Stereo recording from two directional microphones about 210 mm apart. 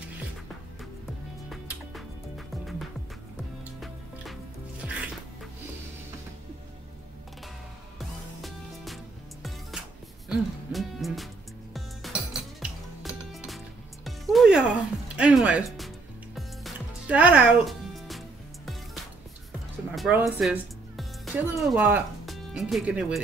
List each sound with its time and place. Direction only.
1.5 s music: centre (ahead or behind)
8.0 s music: centre (ahead or behind)
20.0 s speech: 5° right (ahead or behind)